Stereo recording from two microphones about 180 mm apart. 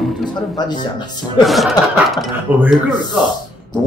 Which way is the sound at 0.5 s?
25° left (ahead or behind).